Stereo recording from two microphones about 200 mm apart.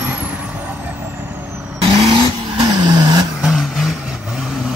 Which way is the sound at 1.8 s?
25° right (ahead or behind).